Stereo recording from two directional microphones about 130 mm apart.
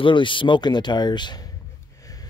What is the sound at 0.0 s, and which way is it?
Speech, 40° left (ahead or behind).